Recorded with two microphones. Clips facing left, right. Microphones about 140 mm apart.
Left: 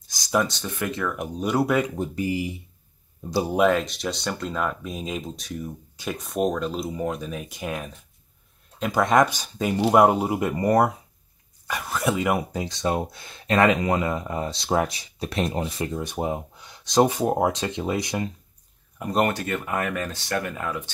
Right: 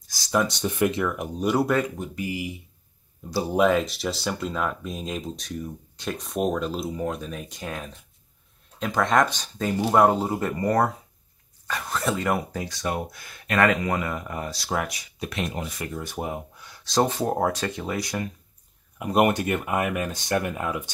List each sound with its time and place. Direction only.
0.5 s speech: 20° right (ahead or behind)
1.0 s speech: centre (ahead or behind)
2.0 s speech: 30° left (ahead or behind)
3.3 s speech: 20° left (ahead or behind)
3.5 s speech: centre (ahead or behind)
12.5 s speech: 20° left (ahead or behind)
18.9 s speech: 10° right (ahead or behind)